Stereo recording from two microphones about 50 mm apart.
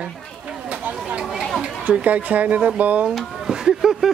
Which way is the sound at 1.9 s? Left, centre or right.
Right.